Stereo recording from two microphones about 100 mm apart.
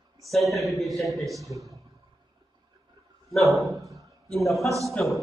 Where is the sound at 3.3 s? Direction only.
Centre (ahead or behind).